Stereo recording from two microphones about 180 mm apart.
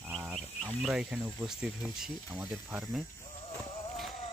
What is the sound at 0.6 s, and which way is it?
Speech, 5° right (ahead or behind).